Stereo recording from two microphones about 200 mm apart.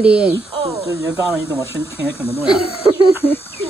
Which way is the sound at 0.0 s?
5° right (ahead or behind).